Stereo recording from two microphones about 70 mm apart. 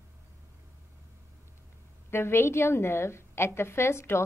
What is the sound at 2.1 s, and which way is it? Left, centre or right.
A woman's voice, left.